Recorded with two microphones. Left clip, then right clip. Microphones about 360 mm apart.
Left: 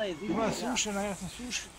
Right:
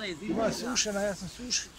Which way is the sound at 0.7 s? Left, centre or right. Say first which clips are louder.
Right 3 dB; right.